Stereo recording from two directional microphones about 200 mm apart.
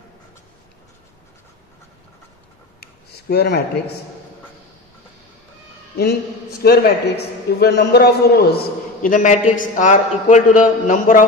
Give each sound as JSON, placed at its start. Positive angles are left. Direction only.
{"t": 2.8, "sound": "speech", "side_deg": 55}
{"t": 6.6, "sound": "a man's voice", "side_deg": 50}